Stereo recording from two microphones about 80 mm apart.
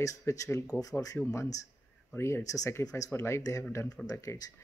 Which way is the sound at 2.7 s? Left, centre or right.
Left.